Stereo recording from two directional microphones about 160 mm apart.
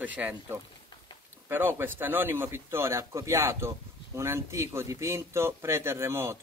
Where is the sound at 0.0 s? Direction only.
10° right (ahead or behind).